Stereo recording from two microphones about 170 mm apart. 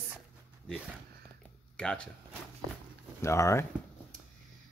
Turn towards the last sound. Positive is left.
turn(degrees=15)  # may be behind; listen again after turning